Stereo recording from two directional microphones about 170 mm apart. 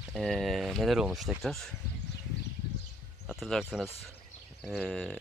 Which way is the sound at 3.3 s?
Centre (ahead or behind).